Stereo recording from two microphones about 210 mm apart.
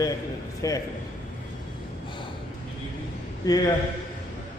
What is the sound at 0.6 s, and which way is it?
Speech, 15° left (ahead or behind).